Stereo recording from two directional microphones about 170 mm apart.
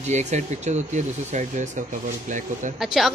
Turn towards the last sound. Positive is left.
turn(degrees=0)  # may be behind; listen again after turning